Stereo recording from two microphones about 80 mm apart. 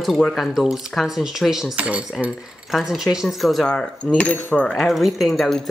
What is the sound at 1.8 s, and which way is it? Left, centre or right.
Speech, centre.